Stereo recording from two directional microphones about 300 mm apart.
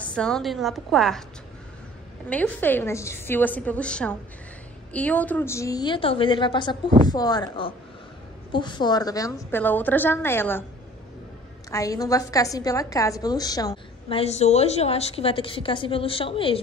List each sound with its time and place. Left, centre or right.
0.0 s a woman's voice: centre
2.2 s a woman's voice: centre
11.7 s a woman's voice: centre